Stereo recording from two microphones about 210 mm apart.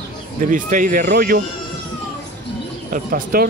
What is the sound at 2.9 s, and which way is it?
Speech, 45° right (ahead or behind).